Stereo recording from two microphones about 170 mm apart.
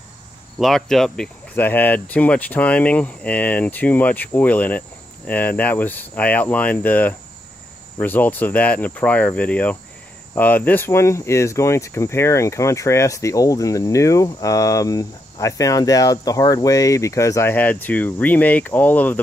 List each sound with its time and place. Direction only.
0.6 s speech: centre (ahead or behind)